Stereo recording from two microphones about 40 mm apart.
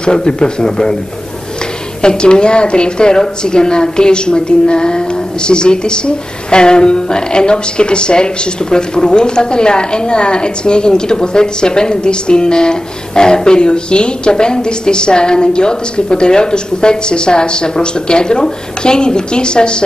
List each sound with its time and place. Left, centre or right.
0.0 s a woman's voice: centre
2.0 s a woman's voice: left